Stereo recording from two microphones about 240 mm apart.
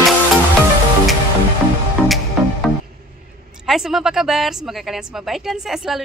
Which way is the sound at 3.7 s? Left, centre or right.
Centre.